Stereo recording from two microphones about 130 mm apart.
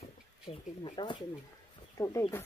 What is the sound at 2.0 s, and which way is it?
Speech, 25° left (ahead or behind).